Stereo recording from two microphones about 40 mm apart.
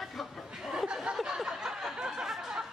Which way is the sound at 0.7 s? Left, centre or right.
Centre.